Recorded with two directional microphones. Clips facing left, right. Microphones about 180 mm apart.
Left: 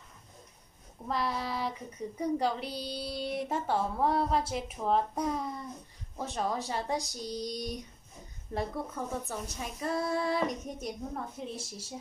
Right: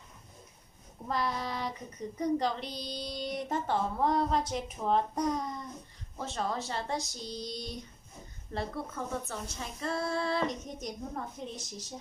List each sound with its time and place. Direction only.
1.0 s child singing: centre (ahead or behind)
6.1 s speech: 15° left (ahead or behind)